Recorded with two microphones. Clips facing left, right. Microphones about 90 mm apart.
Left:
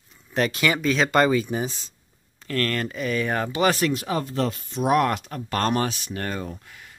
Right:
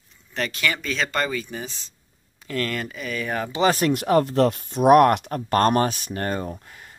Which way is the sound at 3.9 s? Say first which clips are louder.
Right 7 dB; 60° right (ahead or behind).